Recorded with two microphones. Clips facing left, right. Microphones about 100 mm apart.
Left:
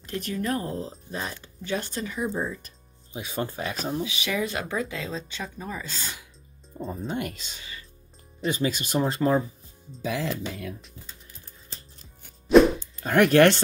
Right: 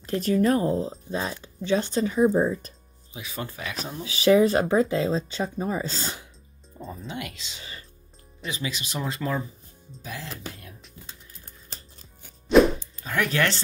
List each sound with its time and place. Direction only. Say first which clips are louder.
0.1 s speech: right 7 dB; 25° right (ahead or behind)
3.1 s speech: left 4 dB; 35° left (ahead or behind)
4.1 s speech: right 10 dB; 35° right (ahead or behind)
6.8 s speech: left 5 dB; 35° left (ahead or behind)
7.1 s speech: left 4 dB; 45° left (ahead or behind)
12.5 s music: left 1 dB; 5° left (ahead or behind)
13.0 s speech: left 8 dB; 55° left (ahead or behind)